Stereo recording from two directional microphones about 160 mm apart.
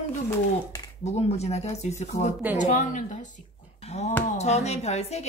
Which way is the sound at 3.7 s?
40° left (ahead or behind).